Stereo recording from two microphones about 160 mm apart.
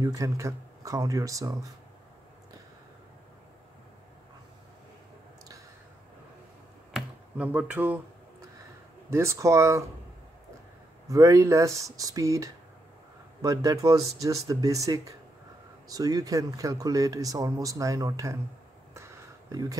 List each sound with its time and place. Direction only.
0.0 s speech: 20° right (ahead or behind)
6.9 s finger snapping: 10° right (ahead or behind)
9.1 s speech: 15° right (ahead or behind)
11.1 s speech: 20° right (ahead or behind)
19.5 s speech: 20° right (ahead or behind)